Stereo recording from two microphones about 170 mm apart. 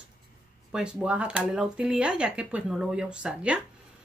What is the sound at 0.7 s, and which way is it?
Speech, 5° right (ahead or behind).